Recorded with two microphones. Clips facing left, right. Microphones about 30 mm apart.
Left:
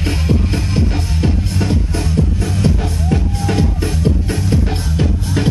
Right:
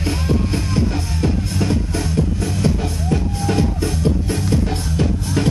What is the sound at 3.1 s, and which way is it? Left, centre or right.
Music, left.